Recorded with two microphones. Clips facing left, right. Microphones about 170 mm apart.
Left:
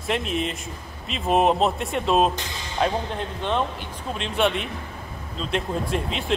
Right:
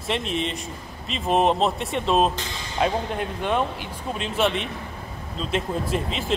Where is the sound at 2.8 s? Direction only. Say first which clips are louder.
Right 1 dB; 10° right (ahead or behind).